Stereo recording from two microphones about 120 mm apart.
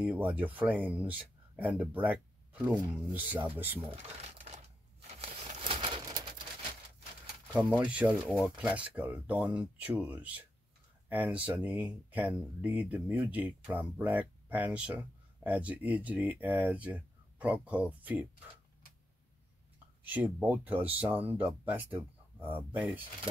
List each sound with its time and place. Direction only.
0.0 s speech: 15° right (ahead or behind)
3.8 s speech: 55° right (ahead or behind)
5.0 s a sound: 55° right (ahead or behind)
5.6 s bird: 50° right (ahead or behind)
7.5 s speech: 10° right (ahead or behind)
20.0 s speech: 15° right (ahead or behind)